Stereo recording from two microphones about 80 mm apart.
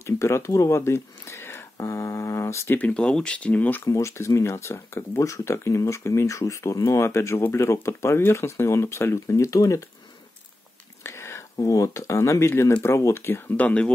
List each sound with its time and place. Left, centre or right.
0.0 s speech: left
2.8 s speech: centre
3.8 s speech: left
11.1 s whispering: left
11.5 s speech: left
13.6 s speech: centre